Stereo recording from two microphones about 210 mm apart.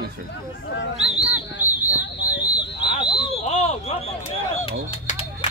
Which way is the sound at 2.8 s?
20° left (ahead or behind).